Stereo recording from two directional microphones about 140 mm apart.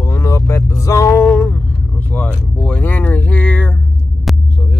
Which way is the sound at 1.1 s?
10° left (ahead or behind).